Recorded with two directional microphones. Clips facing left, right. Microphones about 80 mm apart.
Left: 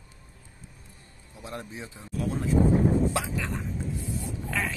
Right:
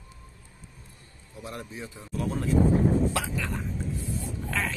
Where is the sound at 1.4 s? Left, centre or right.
Left.